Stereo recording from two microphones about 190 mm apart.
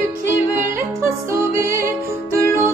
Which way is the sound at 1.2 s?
15° right (ahead or behind).